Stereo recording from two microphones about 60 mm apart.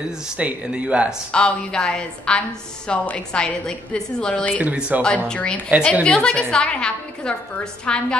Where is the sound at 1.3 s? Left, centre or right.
Centre.